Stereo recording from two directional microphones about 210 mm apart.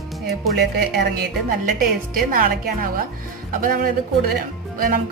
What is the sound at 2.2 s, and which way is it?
Speech, 40° right (ahead or behind).